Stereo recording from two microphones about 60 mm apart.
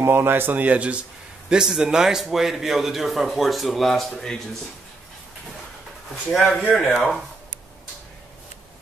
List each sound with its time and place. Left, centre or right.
0.0 s speech: right
1.5 s a man's voice: centre
6.3 s a man's voice: centre